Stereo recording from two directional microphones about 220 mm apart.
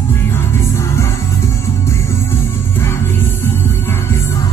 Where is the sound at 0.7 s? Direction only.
10° left (ahead or behind).